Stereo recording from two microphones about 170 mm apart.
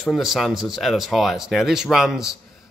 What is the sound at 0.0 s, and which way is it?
Speech, centre (ahead or behind).